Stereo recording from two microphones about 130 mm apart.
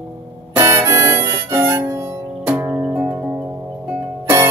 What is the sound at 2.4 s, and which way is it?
Music, 15° right (ahead or behind).